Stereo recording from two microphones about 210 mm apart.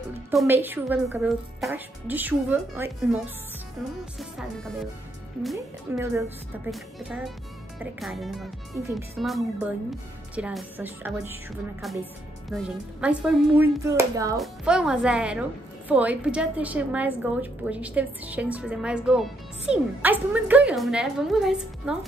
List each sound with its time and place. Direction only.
0.3 s speech: 5° right (ahead or behind)
4.2 s a woman's voice: centre (ahead or behind)
5.9 s speech: 10° right (ahead or behind)
6.7 s a woman's voice: centre (ahead or behind)
13.8 s speech: 15° right (ahead or behind)
14.4 s a woman's voice: 5° right (ahead or behind)